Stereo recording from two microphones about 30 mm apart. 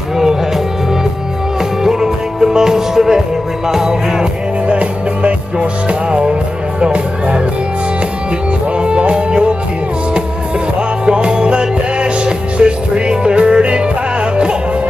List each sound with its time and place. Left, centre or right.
1.8 s music: centre
4.6 s music: right
8.7 s music: right
11.1 s music: right